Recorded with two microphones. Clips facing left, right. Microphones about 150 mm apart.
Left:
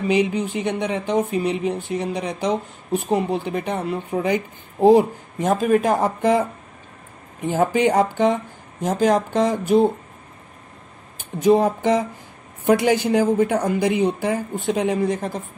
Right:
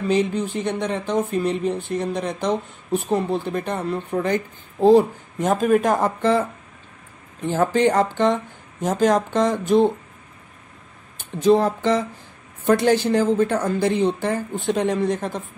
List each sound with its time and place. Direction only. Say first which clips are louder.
0.0 s speech: left 1 dB; 10° left (ahead or behind)
5.4 s speech: even; 5° left (ahead or behind)
5.9 s speech: left 1 dB; 15° left (ahead or behind)
7.4 s speech: even; 15° left (ahead or behind)
11.4 s speech: left 1 dB; 15° left (ahead or behind)